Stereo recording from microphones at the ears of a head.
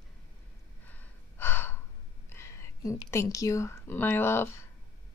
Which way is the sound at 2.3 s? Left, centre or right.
Left.